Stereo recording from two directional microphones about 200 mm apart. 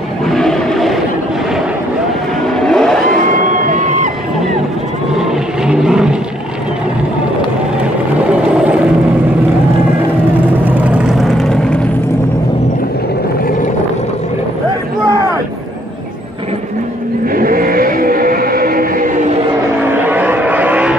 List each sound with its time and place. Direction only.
0.3 s vehicle: centre (ahead or behind)
2.4 s vehicle: centre (ahead or behind)
3.4 s music: 40° right (ahead or behind)
5.7 s vehicle: 5° right (ahead or behind)
8.3 s vehicle: 5° right (ahead or behind)
10.5 s vehicle: 10° right (ahead or behind)
17.3 s vehicle: 45° right (ahead or behind)
19.9 s vehicle: 10° right (ahead or behind)